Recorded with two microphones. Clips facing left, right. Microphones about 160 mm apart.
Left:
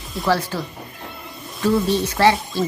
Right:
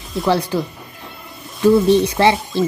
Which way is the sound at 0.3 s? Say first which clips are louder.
Right 3 dB; 15° right (ahead or behind).